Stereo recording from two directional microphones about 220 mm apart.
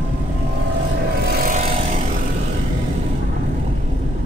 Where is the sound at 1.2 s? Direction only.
40° right (ahead or behind).